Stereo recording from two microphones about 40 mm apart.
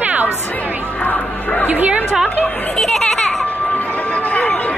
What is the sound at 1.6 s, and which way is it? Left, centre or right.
Speech, right.